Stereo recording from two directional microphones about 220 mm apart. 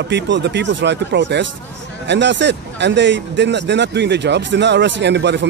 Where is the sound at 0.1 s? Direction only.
55° right (ahead or behind).